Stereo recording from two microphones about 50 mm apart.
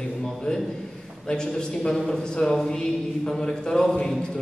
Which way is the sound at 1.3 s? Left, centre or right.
Centre.